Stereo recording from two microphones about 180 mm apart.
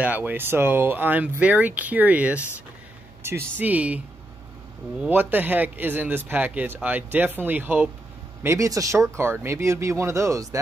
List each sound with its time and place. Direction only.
0.0 s a man's voice: 10° right (ahead or behind)
5.0 s a man's voice: 10° right (ahead or behind)